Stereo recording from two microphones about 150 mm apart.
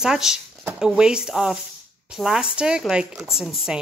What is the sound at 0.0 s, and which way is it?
Speech, 5° right (ahead or behind).